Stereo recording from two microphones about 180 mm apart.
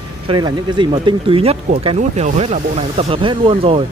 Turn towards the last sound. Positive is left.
turn(degrees=-30)  # may be behind; listen again after turning